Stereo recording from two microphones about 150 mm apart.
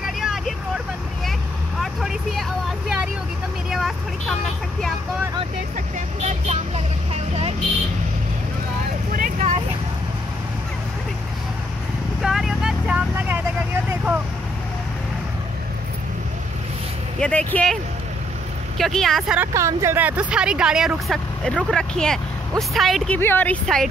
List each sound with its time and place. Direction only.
0.0 s vehicle: centre (ahead or behind)
1.8 s speech: centre (ahead or behind)
3.7 s speech: centre (ahead or behind)
5.9 s speech: 50° right (ahead or behind)
12.2 s vehicle: 5° right (ahead or behind)
13.8 s speech: 10° right (ahead or behind)
17.2 s speech: 10° left (ahead or behind)
18.8 s speech: centre (ahead or behind)
19.4 s speech: 20° right (ahead or behind); by 23.1 s centre (ahead or behind)
23.1 s speech: 10° left (ahead or behind)